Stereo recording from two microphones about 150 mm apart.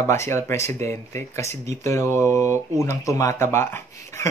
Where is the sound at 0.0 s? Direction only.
15° left (ahead or behind).